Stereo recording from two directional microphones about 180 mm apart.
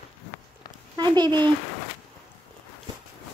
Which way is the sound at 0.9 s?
25° right (ahead or behind).